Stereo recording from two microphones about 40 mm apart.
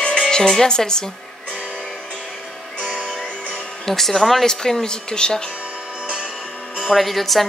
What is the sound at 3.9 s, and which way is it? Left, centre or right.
Speech, centre.